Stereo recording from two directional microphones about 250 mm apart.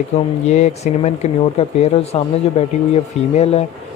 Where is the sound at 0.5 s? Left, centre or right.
Left.